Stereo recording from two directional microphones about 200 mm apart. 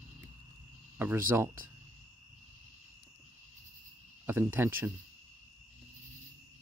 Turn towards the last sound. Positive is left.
turn(degrees=-10)  # may be behind; listen again after turning